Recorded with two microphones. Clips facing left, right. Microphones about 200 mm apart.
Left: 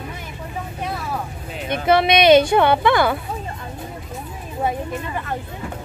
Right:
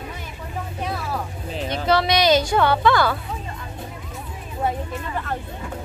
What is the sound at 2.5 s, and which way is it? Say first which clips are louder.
Speech: left 2 dB; 20° left (ahead or behind).